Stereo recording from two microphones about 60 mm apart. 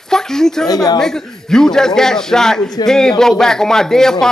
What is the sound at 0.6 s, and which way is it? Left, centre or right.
Speech, left.